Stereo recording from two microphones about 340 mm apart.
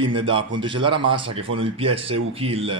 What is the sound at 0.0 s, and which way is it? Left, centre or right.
A man's voice, centre.